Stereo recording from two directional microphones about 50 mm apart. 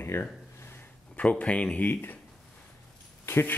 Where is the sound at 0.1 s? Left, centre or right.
Left.